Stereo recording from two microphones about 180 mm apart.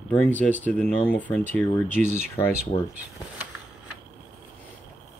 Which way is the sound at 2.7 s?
35° left (ahead or behind).